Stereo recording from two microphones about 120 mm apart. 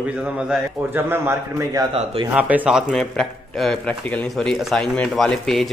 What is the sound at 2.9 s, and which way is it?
Speech, 5° left (ahead or behind).